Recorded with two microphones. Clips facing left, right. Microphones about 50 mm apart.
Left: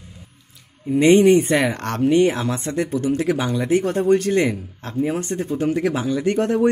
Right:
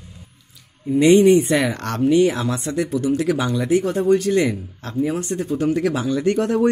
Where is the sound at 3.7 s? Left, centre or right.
Left.